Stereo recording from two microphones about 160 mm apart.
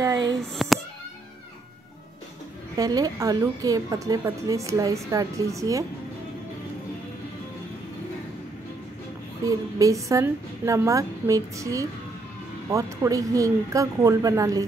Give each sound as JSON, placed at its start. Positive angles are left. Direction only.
{"t": 0.0, "sound": "speech", "side_deg": -20}
{"t": 0.6, "sound": "a sound", "side_deg": 0}
{"t": 2.8, "sound": "speech", "side_deg": -25}
{"t": 9.4, "sound": "speech", "side_deg": -20}